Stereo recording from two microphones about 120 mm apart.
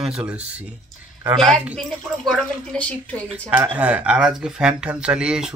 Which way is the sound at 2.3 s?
10° left (ahead or behind).